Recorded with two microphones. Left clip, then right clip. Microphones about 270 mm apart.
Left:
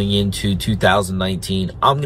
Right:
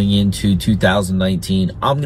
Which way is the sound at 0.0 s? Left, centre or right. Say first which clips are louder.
Right 1 dB; centre.